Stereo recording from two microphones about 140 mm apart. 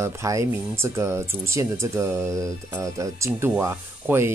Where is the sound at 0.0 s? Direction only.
20° right (ahead or behind).